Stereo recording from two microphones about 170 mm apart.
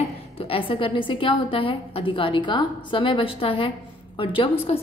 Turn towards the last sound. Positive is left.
turn(degrees=30)  # may be behind; listen again after turning